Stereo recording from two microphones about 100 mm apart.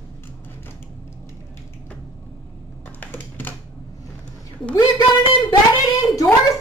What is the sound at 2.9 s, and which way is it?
Typing, 20° left (ahead or behind).